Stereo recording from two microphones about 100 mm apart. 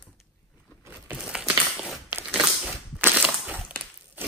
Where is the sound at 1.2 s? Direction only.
5° right (ahead or behind).